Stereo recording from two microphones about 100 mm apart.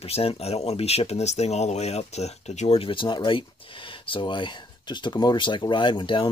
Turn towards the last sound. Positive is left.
turn(degrees=55)  # may be behind; listen again after turning